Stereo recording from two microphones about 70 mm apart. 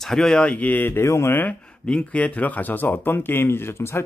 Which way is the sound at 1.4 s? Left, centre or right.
Centre.